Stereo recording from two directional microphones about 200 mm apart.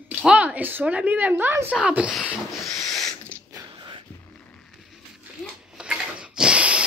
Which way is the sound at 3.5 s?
20° right (ahead or behind).